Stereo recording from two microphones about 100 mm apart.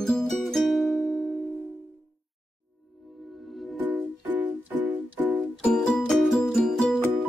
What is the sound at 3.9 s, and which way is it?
Music, 15° right (ahead or behind).